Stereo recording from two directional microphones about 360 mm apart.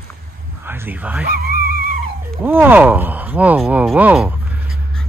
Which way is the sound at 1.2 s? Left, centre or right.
Right.